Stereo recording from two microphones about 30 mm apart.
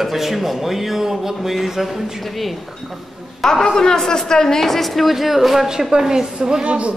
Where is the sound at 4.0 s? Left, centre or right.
Centre.